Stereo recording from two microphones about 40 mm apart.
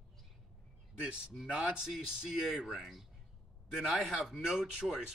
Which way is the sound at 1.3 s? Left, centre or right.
Centre.